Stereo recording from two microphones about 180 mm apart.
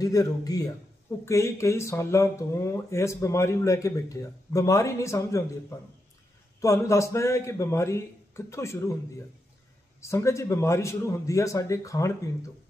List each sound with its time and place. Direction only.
0.0 s a man's voice: 20° left (ahead or behind)
10.0 s speech: 15° left (ahead or behind)